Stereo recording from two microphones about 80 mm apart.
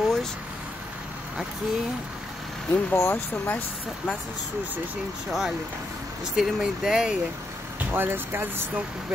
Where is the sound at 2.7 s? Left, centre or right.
Left.